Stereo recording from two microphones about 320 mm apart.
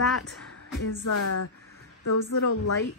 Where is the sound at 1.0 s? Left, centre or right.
Left.